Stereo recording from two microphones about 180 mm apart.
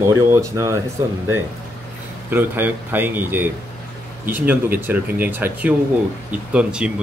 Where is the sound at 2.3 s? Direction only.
10° right (ahead or behind).